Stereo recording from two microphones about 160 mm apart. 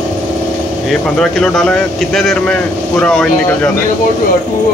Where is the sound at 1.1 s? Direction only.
5° left (ahead or behind).